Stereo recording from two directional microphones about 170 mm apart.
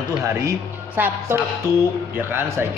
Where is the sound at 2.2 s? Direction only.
15° right (ahead or behind).